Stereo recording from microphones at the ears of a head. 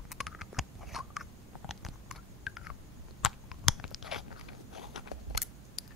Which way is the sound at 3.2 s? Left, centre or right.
Left.